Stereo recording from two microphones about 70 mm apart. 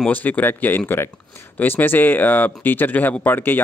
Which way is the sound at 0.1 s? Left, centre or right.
Left.